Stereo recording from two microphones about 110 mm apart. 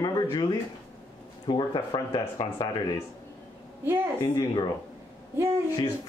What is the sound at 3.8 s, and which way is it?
Speech, 20° right (ahead or behind).